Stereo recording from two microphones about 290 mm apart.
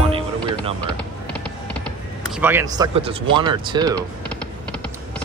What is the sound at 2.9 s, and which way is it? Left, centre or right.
Speech, centre.